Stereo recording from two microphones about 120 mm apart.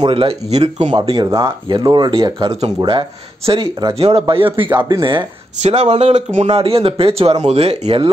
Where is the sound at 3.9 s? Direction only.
55° right (ahead or behind).